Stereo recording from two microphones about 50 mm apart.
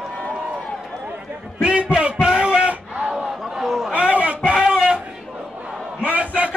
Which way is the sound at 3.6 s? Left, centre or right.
Centre.